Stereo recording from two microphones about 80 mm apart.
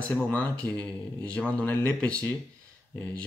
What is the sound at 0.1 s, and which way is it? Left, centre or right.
Speech, centre.